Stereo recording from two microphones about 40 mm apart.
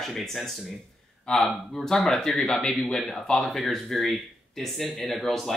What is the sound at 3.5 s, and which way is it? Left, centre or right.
Speech, centre.